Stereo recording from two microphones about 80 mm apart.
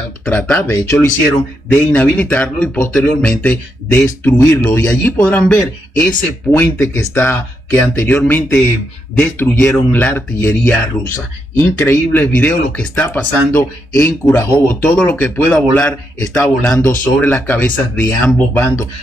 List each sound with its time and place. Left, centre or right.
0.2 s speech: centre
0.7 s speech: left
2.1 s speech: centre
4.2 s speech: left